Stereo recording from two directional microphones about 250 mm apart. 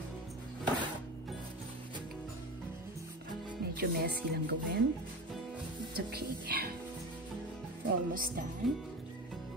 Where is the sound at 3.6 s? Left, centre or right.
Right.